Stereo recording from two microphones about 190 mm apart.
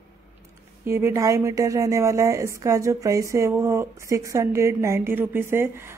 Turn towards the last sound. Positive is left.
turn(degrees=-10)  # may be behind; listen again after turning